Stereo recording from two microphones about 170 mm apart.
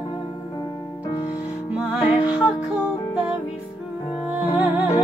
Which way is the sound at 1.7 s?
5° right (ahead or behind).